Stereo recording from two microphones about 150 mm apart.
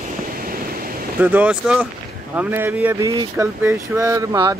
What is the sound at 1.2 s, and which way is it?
Speech, 10° right (ahead or behind).